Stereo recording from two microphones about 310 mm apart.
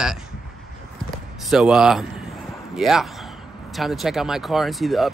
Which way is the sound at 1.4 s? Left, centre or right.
Centre.